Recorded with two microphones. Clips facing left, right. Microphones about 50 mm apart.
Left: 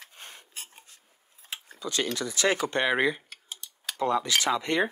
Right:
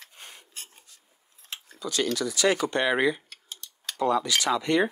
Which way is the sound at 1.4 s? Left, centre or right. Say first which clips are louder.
Left 1 dB; centre.